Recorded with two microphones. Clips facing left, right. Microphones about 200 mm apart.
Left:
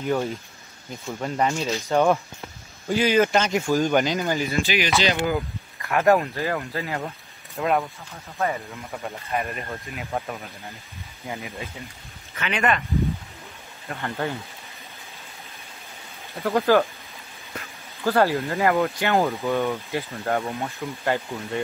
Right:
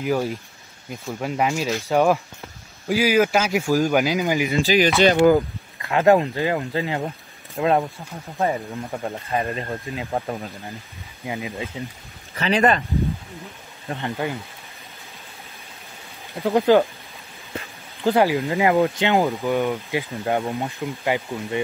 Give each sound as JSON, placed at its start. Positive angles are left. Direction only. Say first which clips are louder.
{"t": 0.0, "sound": "speech", "louder": "right 2 dB", "side_deg": -5}
{"t": 4.6, "sound": "speech", "louder": "right 9 dB", "side_deg": -40}
{"t": 5.8, "sound": "speech", "louder": "right 3 dB", "side_deg": -20}
{"t": 11.2, "sound": "speech", "louder": "right 5 dB", "side_deg": -15}
{"t": 12.4, "sound": "speech", "louder": "right 5 dB", "side_deg": -35}
{"t": 14.1, "sound": "speech", "louder": "even", "side_deg": -5}
{"t": 16.3, "sound": "speech", "louder": "right 3 dB", "side_deg": -15}
{"t": 18.0, "sound": "speech", "louder": "right 2 dB", "side_deg": -15}